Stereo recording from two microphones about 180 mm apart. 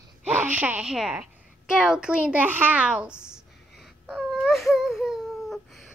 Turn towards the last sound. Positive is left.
turn(degrees=0)  # may be behind; listen again after turning